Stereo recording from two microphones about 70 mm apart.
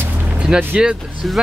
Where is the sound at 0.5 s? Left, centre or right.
Centre.